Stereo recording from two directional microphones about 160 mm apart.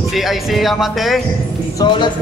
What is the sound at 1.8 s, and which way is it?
Speech, 25° left (ahead or behind).